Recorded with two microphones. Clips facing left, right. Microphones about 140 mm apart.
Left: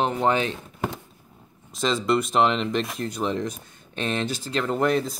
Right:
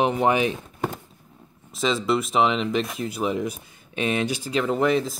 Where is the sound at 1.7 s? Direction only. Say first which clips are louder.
Even; centre (ahead or behind).